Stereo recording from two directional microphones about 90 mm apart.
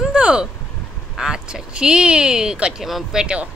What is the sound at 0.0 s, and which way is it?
Vehicle, 10° right (ahead or behind).